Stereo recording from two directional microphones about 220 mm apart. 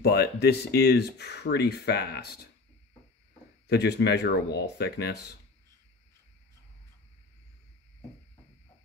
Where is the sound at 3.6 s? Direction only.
50° left (ahead or behind).